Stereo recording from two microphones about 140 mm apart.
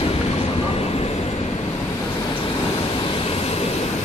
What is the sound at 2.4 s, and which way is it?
Vehicle, 35° left (ahead or behind).